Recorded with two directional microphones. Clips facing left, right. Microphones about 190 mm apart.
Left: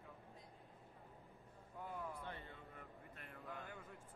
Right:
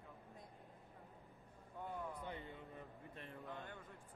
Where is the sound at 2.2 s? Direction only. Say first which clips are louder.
Right 3 dB; 15° right (ahead or behind).